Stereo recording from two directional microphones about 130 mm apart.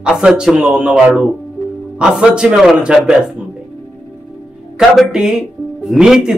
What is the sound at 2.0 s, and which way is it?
Speech, 5° right (ahead or behind).